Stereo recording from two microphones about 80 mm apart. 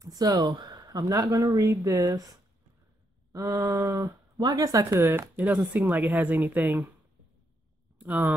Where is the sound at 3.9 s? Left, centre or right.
Right.